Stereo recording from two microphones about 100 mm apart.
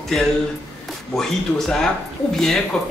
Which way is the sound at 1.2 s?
5° left (ahead or behind).